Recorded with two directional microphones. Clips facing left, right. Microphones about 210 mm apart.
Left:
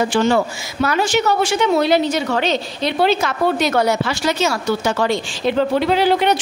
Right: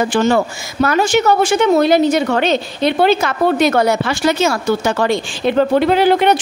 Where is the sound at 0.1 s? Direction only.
50° right (ahead or behind).